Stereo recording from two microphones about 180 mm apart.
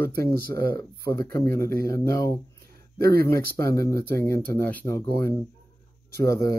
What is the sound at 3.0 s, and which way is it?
Speech, 60° right (ahead or behind).